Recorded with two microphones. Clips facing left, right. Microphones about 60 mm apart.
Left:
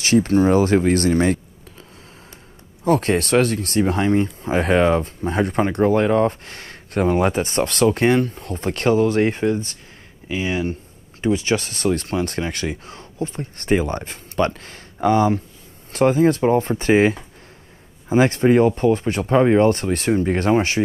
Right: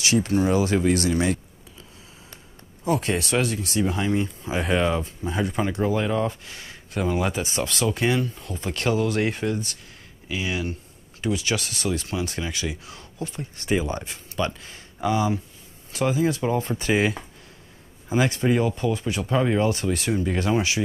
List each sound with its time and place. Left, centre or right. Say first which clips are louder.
0.0 s speech: left 6 dB; left
2.8 s speech: left 6 dB; left